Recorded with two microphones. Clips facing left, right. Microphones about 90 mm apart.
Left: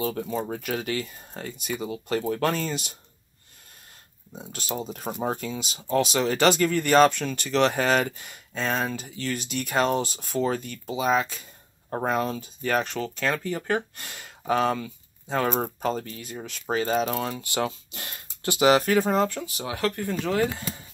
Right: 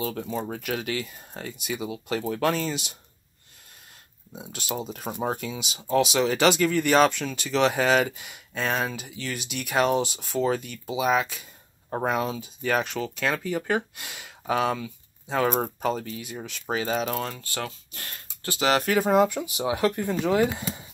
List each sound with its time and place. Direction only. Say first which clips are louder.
0.0 s speech: left 2 dB; centre (ahead or behind)
4.3 s speech: even; centre (ahead or behind)
17.4 s speech: left 6 dB; 20° left (ahead or behind)
18.7 s speech: left 1 dB; centre (ahead or behind); by 20.7 s 15° right (ahead or behind)